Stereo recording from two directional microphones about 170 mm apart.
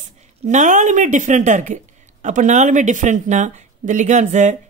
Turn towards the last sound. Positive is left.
turn(degrees=-45)  # may be behind; listen again after turning